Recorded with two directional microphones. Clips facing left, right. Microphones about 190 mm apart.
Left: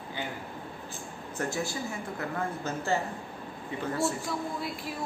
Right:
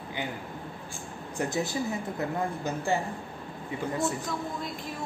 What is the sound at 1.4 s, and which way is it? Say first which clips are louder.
Speech: right 3 dB; 20° right (ahead or behind).